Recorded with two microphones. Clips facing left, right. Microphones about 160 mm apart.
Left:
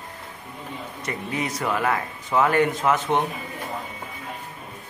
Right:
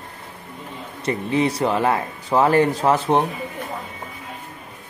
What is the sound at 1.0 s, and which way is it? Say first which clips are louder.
Speech: right 9 dB; 30° right (ahead or behind).